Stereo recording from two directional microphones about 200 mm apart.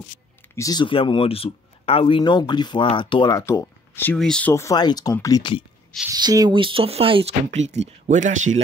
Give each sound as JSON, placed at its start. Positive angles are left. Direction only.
{"t": 0.6, "sound": "speech", "side_deg": 20}
{"t": 6.0, "sound": "speech", "side_deg": -20}